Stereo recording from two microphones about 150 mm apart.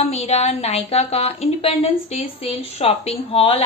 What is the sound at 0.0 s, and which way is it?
A woman's voice, 45° left (ahead or behind).